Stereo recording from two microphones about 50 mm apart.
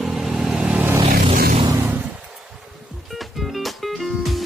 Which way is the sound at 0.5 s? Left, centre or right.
Right.